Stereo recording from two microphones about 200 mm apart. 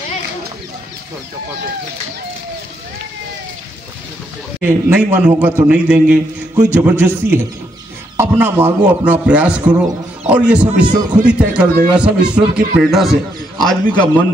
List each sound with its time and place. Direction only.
4.6 s a man's voice: 10° right (ahead or behind)
10.9 s speech: 20° right (ahead or behind)
11.2 s a man's voice: 5° right (ahead or behind)